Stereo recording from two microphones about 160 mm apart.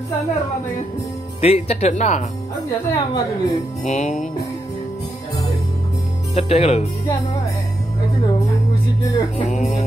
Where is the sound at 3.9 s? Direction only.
45° left (ahead or behind).